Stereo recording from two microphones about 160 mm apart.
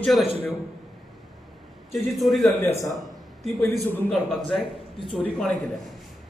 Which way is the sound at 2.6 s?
15° left (ahead or behind).